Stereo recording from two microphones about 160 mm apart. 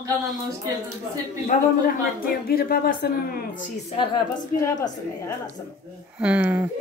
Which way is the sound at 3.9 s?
25° left (ahead or behind).